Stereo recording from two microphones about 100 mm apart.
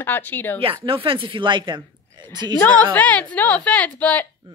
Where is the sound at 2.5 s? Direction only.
15° left (ahead or behind).